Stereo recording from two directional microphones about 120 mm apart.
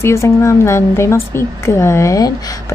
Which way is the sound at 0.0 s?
25° left (ahead or behind).